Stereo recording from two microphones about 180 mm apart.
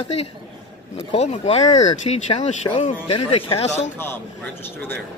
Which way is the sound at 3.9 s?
10° left (ahead or behind).